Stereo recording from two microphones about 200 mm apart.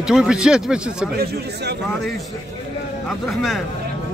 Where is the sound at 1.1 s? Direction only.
50° right (ahead or behind).